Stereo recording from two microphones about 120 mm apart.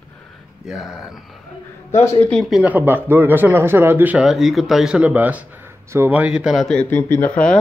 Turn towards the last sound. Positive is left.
turn(degrees=10)  # may be behind; listen again after turning